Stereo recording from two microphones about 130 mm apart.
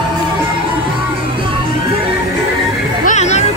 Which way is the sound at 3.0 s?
60° left (ahead or behind).